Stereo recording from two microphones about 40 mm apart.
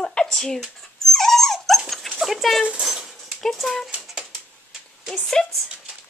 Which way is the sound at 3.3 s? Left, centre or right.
Centre.